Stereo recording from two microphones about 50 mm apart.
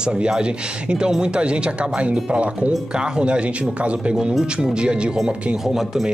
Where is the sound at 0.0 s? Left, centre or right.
Centre.